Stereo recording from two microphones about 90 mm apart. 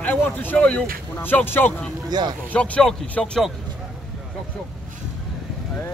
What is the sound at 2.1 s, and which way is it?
Speech, 50° right (ahead or behind).